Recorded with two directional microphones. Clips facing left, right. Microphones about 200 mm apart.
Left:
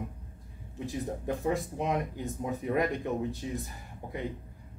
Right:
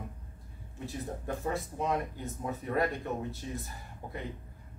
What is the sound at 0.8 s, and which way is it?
Speech, 15° left (ahead or behind).